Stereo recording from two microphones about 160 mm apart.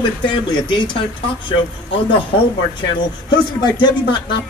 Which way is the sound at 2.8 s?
25° left (ahead or behind).